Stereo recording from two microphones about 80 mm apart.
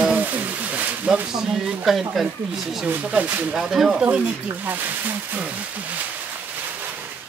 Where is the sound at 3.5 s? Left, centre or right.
Centre.